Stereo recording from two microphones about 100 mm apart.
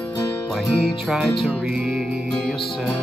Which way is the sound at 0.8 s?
5° right (ahead or behind).